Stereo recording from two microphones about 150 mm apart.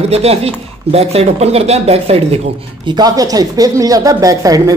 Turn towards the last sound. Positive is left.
turn(degrees=-25)  # may be behind; listen again after turning